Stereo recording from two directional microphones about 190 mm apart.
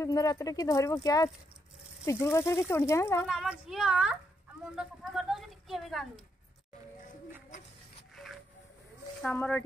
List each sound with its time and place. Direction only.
0.0 s speech: 20° left (ahead or behind)
3.3 s a woman's voice: centre (ahead or behind)
9.2 s speech: 10° left (ahead or behind)